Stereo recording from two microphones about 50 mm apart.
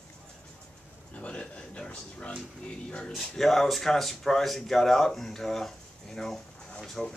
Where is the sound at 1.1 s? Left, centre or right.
Left.